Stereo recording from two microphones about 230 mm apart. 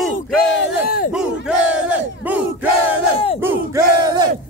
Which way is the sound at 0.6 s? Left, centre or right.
Left.